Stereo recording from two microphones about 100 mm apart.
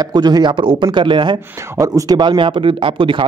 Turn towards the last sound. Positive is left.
turn(degrees=-55)  # may be behind; listen again after turning